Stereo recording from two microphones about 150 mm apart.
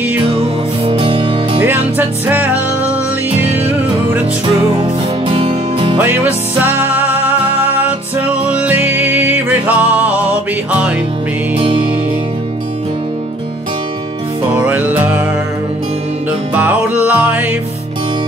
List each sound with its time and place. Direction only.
0.3 s music: 40° right (ahead or behind)
1.6 s music: 15° right (ahead or behind)
5.3 s music: 35° right (ahead or behind)
5.9 s music: 15° right (ahead or behind)
14.6 s music: 10° right (ahead or behind)
16.5 s music: 10° right (ahead or behind)